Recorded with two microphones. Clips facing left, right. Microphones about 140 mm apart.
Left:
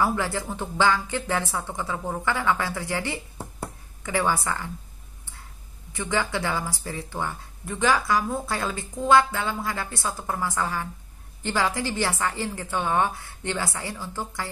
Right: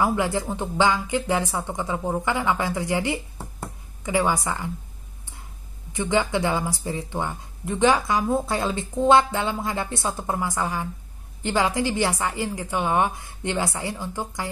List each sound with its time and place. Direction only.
0.0 s speech: 20° right (ahead or behind)
5.9 s speech: 20° right (ahead or behind)